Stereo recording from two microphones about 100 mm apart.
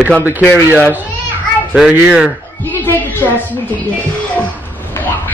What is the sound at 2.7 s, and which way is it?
Speech, 20° left (ahead or behind).